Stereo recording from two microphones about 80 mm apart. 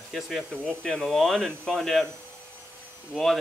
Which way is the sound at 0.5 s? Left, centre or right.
Centre.